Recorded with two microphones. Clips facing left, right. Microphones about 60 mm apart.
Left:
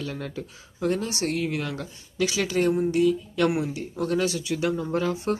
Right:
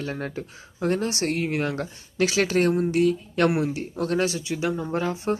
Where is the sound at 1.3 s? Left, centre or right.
Right.